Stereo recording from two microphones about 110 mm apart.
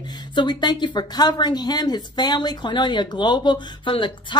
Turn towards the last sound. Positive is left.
turn(degrees=45)  # may be behind; listen again after turning